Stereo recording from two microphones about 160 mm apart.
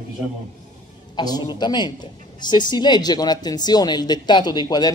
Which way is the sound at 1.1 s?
25° left (ahead or behind).